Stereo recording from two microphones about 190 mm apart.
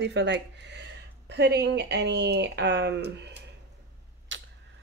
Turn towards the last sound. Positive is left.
turn(degrees=-75)  # may be behind; listen again after turning